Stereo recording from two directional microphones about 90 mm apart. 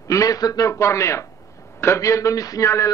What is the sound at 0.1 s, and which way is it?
A man's voice, 40° left (ahead or behind).